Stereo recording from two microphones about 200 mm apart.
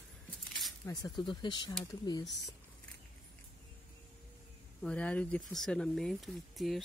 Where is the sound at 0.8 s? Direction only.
20° left (ahead or behind).